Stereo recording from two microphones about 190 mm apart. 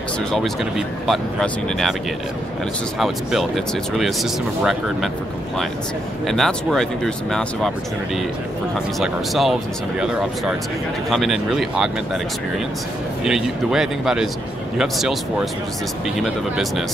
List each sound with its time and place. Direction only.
0.3 s speech: centre (ahead or behind)
3.0 s speech: centre (ahead or behind)
6.2 s speech: centre (ahead or behind)
8.7 s speech: centre (ahead or behind)
16.2 s speech: centre (ahead or behind)